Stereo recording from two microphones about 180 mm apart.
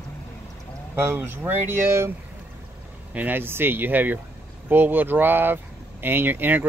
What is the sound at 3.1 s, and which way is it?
Speech, 10° right (ahead or behind).